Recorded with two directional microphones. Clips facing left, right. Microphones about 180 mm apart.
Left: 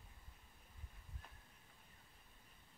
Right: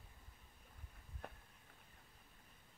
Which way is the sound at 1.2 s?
60° right (ahead or behind).